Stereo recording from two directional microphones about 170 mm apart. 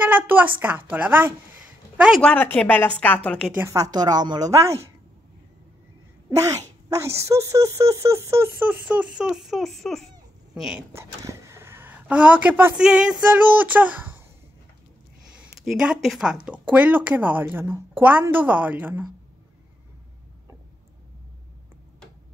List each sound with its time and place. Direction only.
0.1 s speech: 10° right (ahead or behind)
2.3 s a woman's voice: 10° left (ahead or behind)
3.5 s a woman's voice: 15° right (ahead or behind)
6.3 s a woman's voice: 20° right (ahead or behind); by 10.8 s 5° right (ahead or behind)
10.9 s speech: 15° right (ahead or behind)
15.4 s speech: 5° right (ahead or behind)